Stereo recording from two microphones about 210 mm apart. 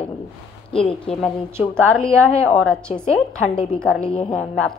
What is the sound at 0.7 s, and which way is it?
Speech, 25° left (ahead or behind).